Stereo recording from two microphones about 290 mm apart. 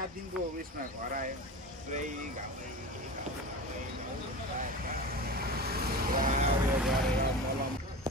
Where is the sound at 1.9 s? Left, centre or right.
Right.